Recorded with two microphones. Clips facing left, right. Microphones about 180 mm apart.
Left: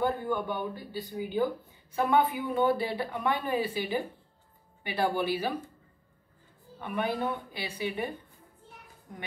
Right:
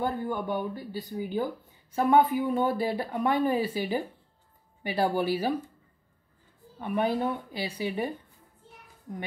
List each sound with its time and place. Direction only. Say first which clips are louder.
0.0 s speech: left 1 dB; 40° right (ahead or behind)
6.8 s speech: right 4 dB; 40° right (ahead or behind)